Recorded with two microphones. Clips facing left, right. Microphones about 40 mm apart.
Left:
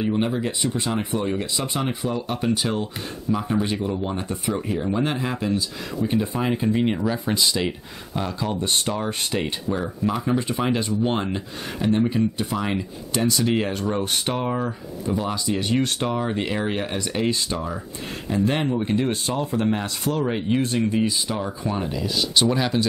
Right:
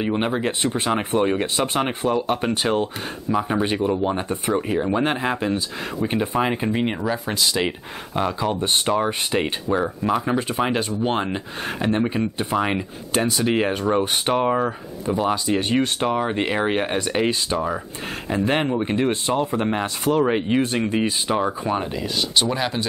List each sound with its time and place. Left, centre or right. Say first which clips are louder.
0.0 s speech: right 1 dB; right
16.0 s speech: right 3 dB; right
21.6 s speech: right 2 dB; centre